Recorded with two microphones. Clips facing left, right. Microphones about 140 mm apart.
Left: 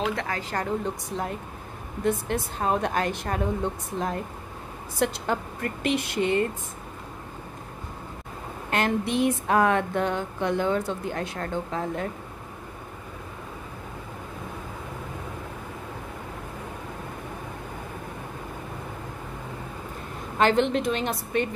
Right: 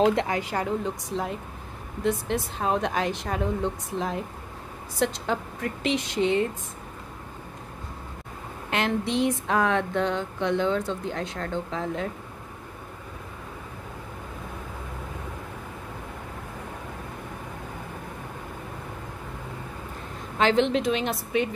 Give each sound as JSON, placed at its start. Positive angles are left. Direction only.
{"t": 0.0, "sound": "speech", "side_deg": -25}
{"t": 0.4, "sound": "a woman's voice", "side_deg": -10}
{"t": 0.8, "sound": "a woman's voice", "side_deg": 0}
{"t": 8.6, "sound": "speech", "side_deg": 0}
{"t": 20.3, "sound": "a woman's voice", "side_deg": 0}